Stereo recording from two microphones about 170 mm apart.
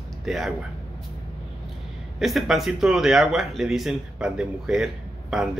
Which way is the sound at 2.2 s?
Centre (ahead or behind).